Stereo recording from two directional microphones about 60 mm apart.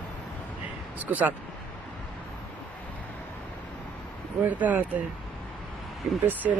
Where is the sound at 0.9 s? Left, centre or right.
Right.